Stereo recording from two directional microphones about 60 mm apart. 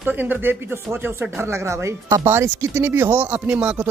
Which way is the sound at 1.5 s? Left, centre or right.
Right.